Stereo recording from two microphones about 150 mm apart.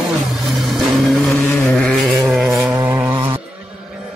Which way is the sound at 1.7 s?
5° left (ahead or behind).